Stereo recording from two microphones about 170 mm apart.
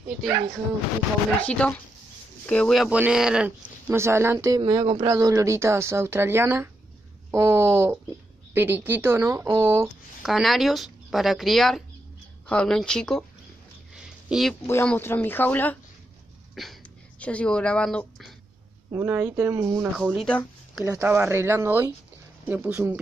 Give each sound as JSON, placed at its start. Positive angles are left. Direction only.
{"t": 1.4, "sound": "speech", "side_deg": 10}
{"t": 3.9, "sound": "speech", "side_deg": -15}
{"t": 10.2, "sound": "speech", "side_deg": 0}
{"t": 13.9, "sound": "a sound", "side_deg": 0}
{"t": 14.7, "sound": "speech", "side_deg": 15}
{"t": 16.6, "sound": "speech", "side_deg": 0}
{"t": 18.9, "sound": "speech", "side_deg": -15}
{"t": 19.8, "sound": "speech", "side_deg": -5}